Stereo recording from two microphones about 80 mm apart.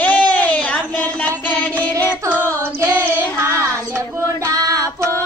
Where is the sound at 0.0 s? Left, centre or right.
Centre.